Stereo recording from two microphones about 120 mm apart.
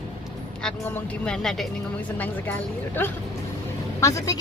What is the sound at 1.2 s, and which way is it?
Speech, 5° left (ahead or behind).